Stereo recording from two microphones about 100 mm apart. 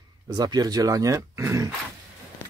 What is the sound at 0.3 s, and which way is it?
Speech, 40° right (ahead or behind).